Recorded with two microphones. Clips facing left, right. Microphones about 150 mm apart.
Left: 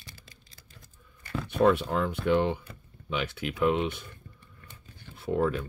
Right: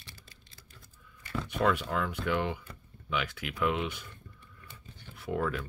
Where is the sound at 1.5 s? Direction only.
30° left (ahead or behind).